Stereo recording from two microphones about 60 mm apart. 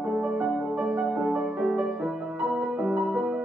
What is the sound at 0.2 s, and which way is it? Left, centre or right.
Music, centre.